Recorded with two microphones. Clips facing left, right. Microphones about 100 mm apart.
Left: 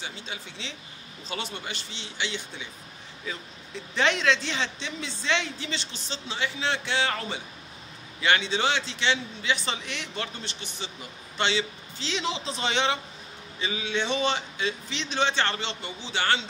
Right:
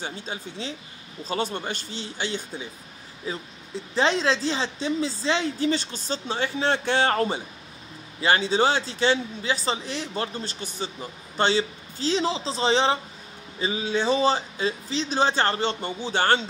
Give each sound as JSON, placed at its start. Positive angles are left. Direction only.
{"t": 0.0, "sound": "speech", "side_deg": -45}